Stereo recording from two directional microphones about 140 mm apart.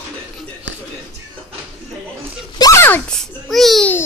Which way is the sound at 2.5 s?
25° left (ahead or behind).